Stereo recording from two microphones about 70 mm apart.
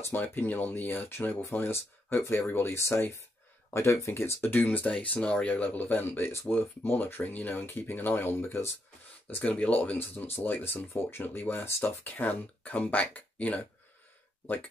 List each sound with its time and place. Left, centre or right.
0.2 s speech: left
4.2 s speech: left
9.3 s speech: centre